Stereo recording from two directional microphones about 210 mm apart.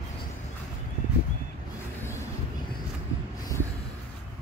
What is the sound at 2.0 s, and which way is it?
Vehicle, 10° left (ahead or behind).